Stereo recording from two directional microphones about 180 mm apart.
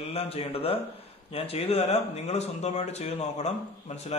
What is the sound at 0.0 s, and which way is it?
Speech, 35° left (ahead or behind).